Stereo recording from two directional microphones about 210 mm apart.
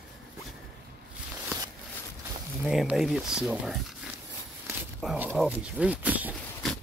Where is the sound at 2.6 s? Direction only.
5° right (ahead or behind).